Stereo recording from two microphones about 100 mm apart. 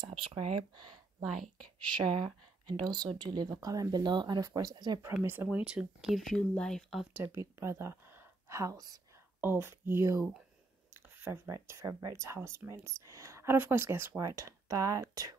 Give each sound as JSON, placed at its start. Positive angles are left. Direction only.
{"t": 0.0, "sound": "speech", "side_deg": -65}
{"t": 1.2, "sound": "speech", "side_deg": 0}
{"t": 1.8, "sound": "speech", "side_deg": -50}
{"t": 5.2, "sound": "speech", "side_deg": -20}
{"t": 7.3, "sound": "speech", "side_deg": -30}
{"t": 9.4, "sound": "speech", "side_deg": -20}